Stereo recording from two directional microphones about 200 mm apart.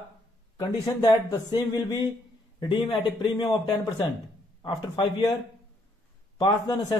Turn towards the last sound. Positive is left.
turn(degrees=20)  # may be behind; listen again after turning